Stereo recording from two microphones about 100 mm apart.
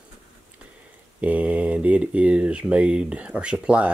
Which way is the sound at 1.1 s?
15° right (ahead or behind).